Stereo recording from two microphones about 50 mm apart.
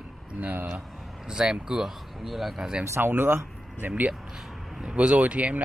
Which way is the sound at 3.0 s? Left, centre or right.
Right.